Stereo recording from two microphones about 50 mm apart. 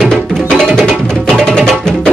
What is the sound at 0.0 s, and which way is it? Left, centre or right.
Music, centre.